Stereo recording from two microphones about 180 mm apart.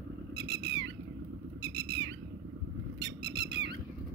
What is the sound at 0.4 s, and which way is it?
Cat, 65° right (ahead or behind).